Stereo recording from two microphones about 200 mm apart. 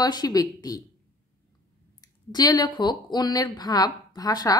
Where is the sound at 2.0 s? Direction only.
20° left (ahead or behind).